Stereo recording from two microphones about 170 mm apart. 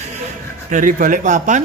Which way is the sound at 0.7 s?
50° right (ahead or behind).